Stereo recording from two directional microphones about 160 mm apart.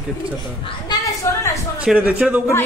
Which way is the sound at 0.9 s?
20° left (ahead or behind).